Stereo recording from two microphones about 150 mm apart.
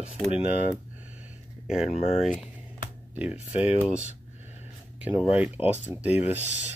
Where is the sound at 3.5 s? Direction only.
50° left (ahead or behind).